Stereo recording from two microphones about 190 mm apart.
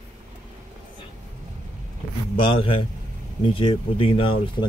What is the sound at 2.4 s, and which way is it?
Speech, 25° left (ahead or behind).